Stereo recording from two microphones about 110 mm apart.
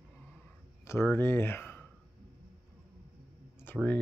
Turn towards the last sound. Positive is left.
turn(degrees=20)  # may be behind; listen again after turning